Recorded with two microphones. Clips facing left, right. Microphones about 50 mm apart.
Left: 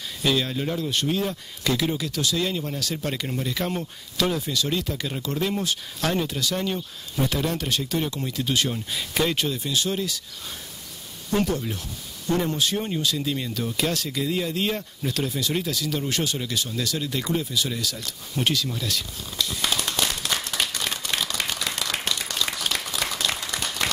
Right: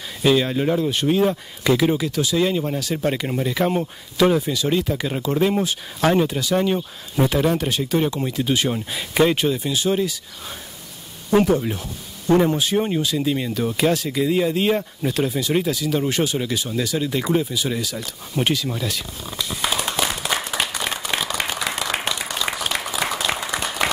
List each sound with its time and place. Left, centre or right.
0.2 s speech: centre
11.2 s speech: centre
13.7 s a sound: centre